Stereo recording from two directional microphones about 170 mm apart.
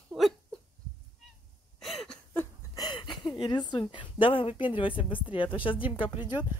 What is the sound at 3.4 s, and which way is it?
Speech, 25° left (ahead or behind).